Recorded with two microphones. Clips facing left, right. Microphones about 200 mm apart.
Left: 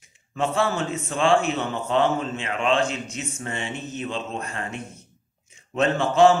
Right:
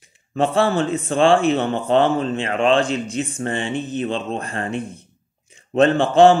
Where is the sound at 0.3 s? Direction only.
35° right (ahead or behind).